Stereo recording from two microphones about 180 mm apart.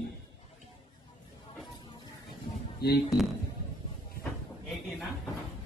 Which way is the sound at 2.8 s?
65° left (ahead or behind).